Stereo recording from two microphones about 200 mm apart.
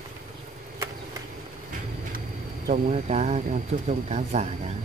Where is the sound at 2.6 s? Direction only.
35° right (ahead or behind).